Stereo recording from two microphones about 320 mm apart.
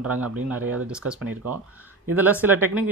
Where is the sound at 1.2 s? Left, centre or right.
Right.